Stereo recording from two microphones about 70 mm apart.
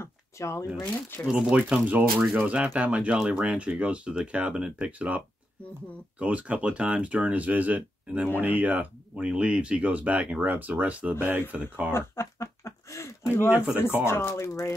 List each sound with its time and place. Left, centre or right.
0.0 s shuffling cards: left
1.2 s speech: centre
11.9 s chicken: left
14.0 s speech: left